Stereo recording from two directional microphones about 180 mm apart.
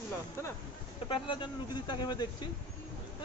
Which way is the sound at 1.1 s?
25° left (ahead or behind).